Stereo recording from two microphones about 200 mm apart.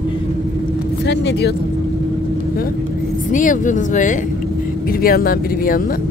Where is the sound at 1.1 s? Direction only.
60° left (ahead or behind).